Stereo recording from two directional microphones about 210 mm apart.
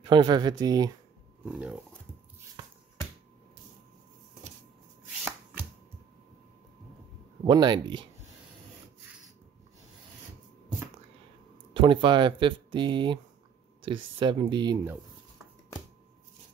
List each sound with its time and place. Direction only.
0.0 s speech: 20° right (ahead or behind)
1.5 s speech: 5° right (ahead or behind)
7.4 s speech: 20° right (ahead or behind)
11.7 s speech: 25° right (ahead or behind)